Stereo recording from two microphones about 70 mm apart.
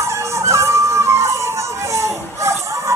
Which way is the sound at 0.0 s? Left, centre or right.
Right.